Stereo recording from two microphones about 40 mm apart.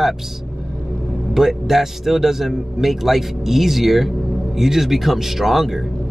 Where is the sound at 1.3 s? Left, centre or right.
Centre.